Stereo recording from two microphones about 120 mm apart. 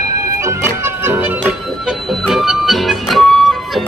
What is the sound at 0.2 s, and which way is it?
Music, 25° right (ahead or behind).